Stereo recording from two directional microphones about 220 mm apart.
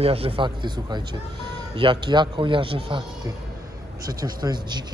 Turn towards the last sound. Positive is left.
turn(degrees=-20)  # may be behind; listen again after turning